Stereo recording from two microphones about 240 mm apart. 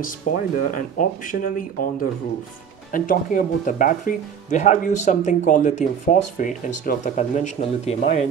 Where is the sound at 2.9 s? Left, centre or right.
Left.